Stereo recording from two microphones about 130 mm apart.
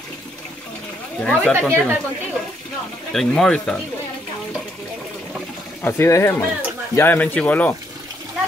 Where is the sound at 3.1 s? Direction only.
5° left (ahead or behind).